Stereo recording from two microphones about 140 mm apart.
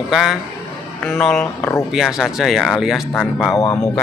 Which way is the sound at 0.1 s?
5° right (ahead or behind).